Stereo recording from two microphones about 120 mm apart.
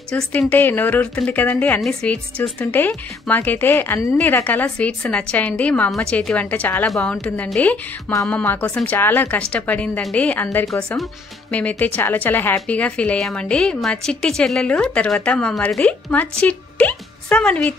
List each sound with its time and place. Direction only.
0.1 s a woman's voice: 10° left (ahead or behind)